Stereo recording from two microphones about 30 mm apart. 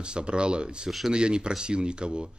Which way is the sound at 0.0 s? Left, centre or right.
Right.